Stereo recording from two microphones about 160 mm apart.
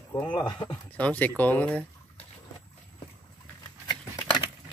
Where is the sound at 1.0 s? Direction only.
10° left (ahead or behind).